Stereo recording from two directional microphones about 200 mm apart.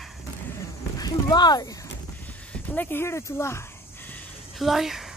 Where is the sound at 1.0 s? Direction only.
20° left (ahead or behind).